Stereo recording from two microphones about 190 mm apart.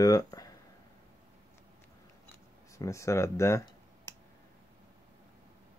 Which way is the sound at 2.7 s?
15° left (ahead or behind).